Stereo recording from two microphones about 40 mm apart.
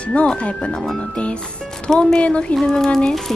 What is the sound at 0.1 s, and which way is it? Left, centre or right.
Speech, left.